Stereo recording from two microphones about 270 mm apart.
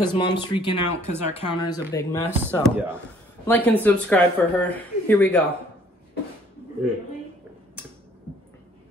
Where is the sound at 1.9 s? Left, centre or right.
Centre.